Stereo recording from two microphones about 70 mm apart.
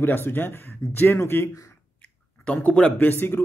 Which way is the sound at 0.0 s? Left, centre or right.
Left.